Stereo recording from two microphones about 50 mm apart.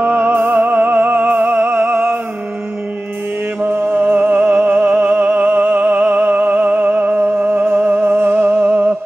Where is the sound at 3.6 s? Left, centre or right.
Right.